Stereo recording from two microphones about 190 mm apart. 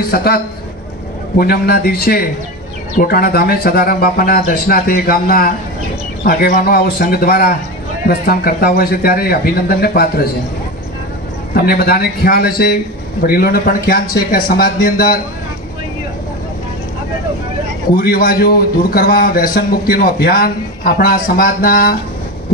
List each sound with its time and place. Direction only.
0.0 s a man's voice: 50° left (ahead or behind)
1.4 s a man's voice: 50° left (ahead or behind)
11.5 s a man's voice: 55° left (ahead or behind)
17.9 s a man's voice: 50° left (ahead or behind)